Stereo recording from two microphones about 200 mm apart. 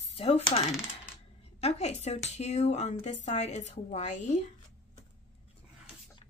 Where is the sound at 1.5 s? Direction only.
30° left (ahead or behind).